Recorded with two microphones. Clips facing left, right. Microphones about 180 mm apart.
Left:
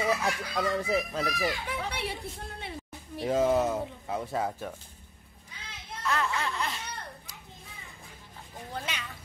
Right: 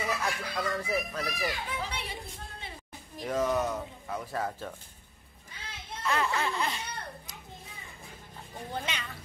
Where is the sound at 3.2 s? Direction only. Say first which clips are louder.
Left 4 dB; 30° left (ahead or behind).